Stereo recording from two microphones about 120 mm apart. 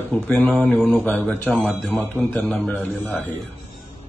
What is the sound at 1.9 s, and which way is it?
A man's voice, 15° left (ahead or behind).